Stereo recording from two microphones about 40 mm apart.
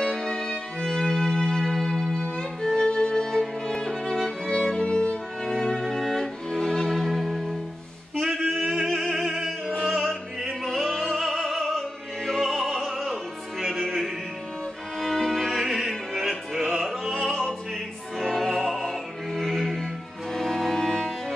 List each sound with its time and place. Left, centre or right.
0.0 s violin: centre
1.7 s music: centre
4.8 s music: left
5.4 s music: centre
8.2 s singing: centre
10.6 s music: centre
12.3 s opera: centre
15.0 s music: centre
16.7 s opera: centre
18.2 s music: centre